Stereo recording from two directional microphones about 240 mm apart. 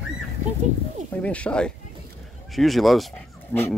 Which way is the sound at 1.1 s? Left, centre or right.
Centre.